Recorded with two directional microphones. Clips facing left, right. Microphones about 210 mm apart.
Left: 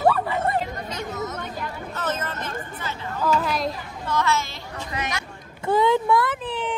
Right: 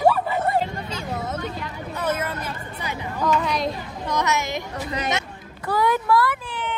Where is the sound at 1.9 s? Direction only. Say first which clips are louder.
Right 5 dB; 10° right (ahead or behind).